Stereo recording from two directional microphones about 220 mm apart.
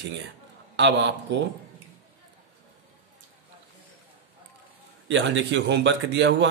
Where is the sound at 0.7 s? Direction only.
50° right (ahead or behind).